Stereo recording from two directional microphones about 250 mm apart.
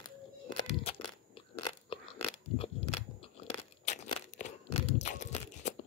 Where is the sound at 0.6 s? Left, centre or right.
Left.